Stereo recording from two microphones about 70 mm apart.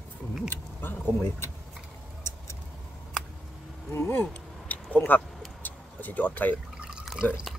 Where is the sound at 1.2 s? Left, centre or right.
Left.